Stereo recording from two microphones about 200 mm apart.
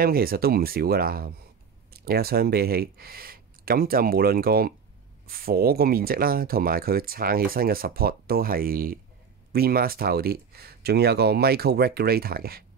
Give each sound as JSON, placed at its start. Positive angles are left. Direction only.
{"t": 0.0, "sound": "speech", "side_deg": -50}